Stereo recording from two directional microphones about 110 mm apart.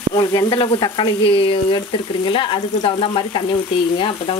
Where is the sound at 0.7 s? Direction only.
50° left (ahead or behind).